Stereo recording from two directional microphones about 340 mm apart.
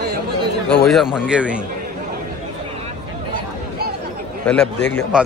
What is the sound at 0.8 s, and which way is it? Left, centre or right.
Speech, centre.